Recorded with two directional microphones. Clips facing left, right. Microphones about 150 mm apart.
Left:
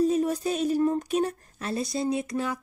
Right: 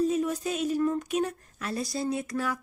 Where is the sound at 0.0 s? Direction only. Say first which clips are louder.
Left 3 dB; 35° left (ahead or behind).